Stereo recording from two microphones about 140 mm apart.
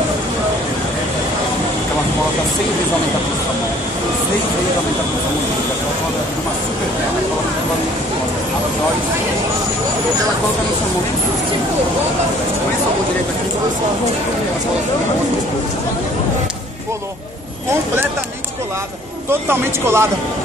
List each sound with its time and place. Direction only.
19.5 s speech: 20° right (ahead or behind)